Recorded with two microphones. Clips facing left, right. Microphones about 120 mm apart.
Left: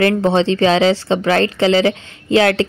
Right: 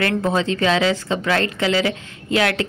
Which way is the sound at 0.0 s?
30° left (ahead or behind).